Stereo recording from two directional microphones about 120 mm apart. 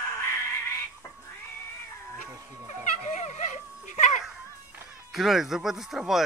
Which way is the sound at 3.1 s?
75° left (ahead or behind).